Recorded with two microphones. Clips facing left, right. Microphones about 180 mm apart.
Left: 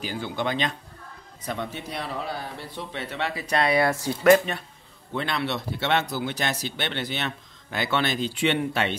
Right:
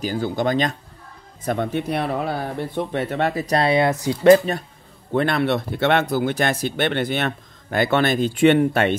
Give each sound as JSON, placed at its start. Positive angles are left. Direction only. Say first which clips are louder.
{"t": 0.0, "sound": "speech", "louder": "right 7 dB", "side_deg": -40}
{"t": 4.2, "sound": "speech", "louder": "right 5 dB", "side_deg": -30}
{"t": 5.1, "sound": "speech", "louder": "right 8 dB", "side_deg": -50}